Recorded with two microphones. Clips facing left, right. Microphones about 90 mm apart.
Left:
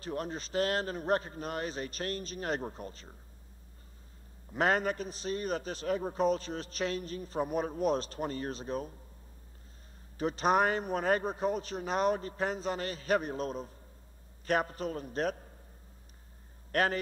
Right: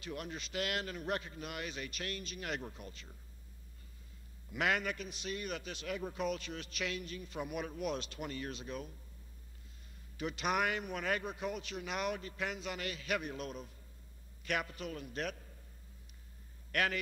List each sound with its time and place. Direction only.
0.0 s a man's voice: 35° left (ahead or behind)
4.5 s a man's voice: 35° left (ahead or behind)
10.1 s a man's voice: 35° left (ahead or behind)
16.7 s a man's voice: 35° left (ahead or behind)